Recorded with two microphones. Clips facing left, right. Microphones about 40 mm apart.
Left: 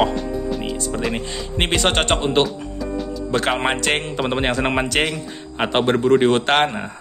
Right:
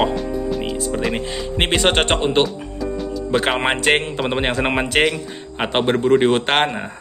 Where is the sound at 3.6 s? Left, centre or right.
Centre.